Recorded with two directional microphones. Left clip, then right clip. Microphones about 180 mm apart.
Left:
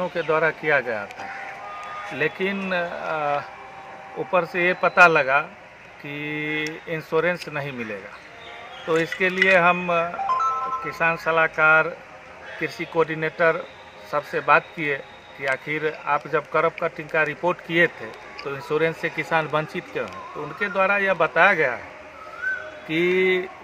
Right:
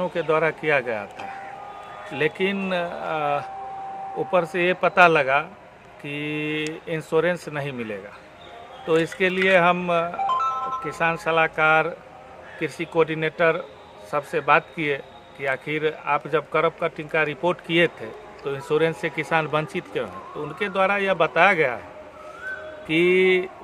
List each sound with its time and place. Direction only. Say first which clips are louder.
0.1 s speech: even; 30° right (ahead or behind)
2.1 s speech: right 2 dB; 35° right (ahead or behind)
10.1 s music: even; 20° right (ahead or behind)
10.9 s speech: left 1 dB; 35° right (ahead or behind)
22.8 s speech: right 2 dB; 35° right (ahead or behind)